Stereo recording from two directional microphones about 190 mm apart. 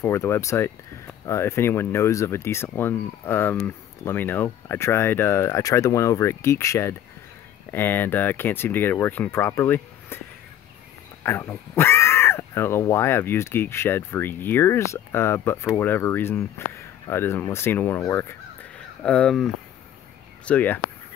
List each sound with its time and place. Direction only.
0.0 s speech: 15° left (ahead or behind)
11.2 s speech: 15° left (ahead or behind)